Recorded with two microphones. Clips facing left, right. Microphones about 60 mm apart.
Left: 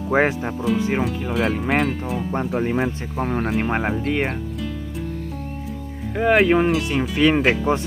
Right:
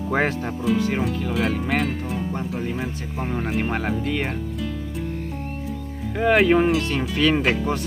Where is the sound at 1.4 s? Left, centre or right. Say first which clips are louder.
Left 3 dB; centre.